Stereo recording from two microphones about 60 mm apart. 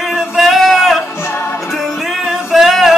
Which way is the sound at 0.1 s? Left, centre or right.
Centre.